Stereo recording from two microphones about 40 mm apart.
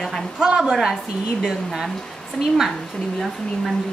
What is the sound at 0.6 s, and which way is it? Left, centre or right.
Speech, centre.